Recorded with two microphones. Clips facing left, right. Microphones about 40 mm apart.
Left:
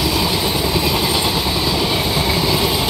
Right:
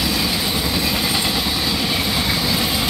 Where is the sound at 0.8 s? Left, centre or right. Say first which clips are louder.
Left 3 dB; left.